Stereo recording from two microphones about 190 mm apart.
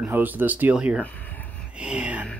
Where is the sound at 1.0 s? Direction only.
10° left (ahead or behind).